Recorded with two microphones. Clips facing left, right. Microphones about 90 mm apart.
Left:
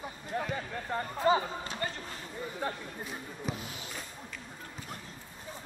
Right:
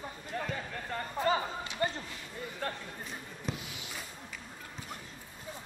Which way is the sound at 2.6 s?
15° left (ahead or behind).